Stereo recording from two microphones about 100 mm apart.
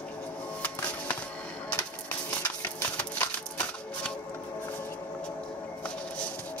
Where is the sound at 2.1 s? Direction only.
20° left (ahead or behind).